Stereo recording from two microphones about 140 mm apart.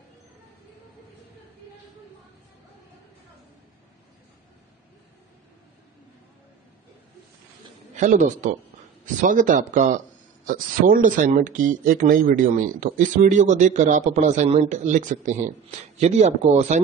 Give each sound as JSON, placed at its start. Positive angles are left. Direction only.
{"t": 7.9, "sound": "speech", "side_deg": -60}
{"t": 10.4, "sound": "speech", "side_deg": -85}